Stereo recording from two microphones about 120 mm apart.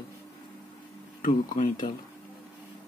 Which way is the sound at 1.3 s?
90° left.